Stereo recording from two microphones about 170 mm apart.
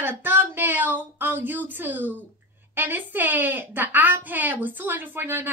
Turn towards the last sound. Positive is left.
turn(degrees=-15)  # may be behind; listen again after turning